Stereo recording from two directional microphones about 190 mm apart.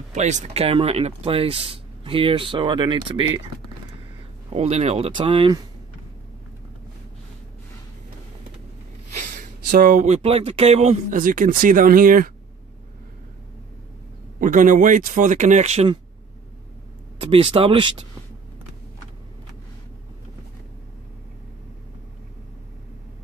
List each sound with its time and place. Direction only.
0.1 s speech: 40° right (ahead or behind)
4.5 s speech: 35° right (ahead or behind)
9.2 s speech: 45° right (ahead or behind)
14.4 s speech: 45° right (ahead or behind)
17.2 s speech: 30° right (ahead or behind)